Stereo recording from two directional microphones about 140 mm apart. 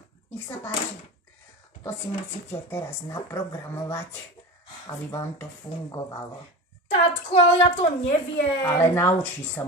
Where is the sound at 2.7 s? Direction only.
20° left (ahead or behind).